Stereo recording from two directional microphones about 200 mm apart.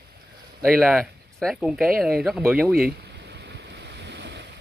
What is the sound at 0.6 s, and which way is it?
Speech, 5° right (ahead or behind).